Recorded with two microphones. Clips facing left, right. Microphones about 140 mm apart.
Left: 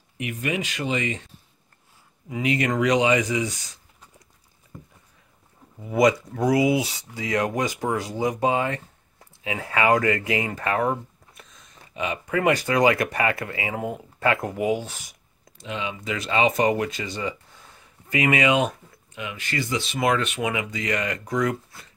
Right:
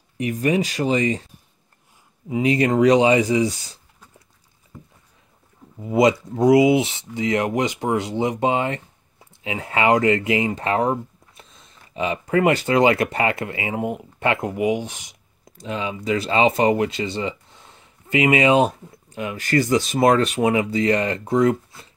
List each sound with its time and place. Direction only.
0.2 s speech: 35° right (ahead or behind)
5.8 s speech: 25° right (ahead or behind)
15.5 s speech: 40° right (ahead or behind)